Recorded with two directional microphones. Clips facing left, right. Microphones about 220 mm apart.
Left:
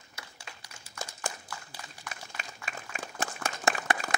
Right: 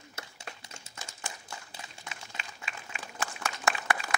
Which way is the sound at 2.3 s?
45° left (ahead or behind).